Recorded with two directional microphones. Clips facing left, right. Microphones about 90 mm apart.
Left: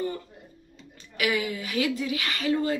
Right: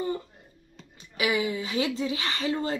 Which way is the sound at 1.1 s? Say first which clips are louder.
Right 1 dB; 20° right (ahead or behind).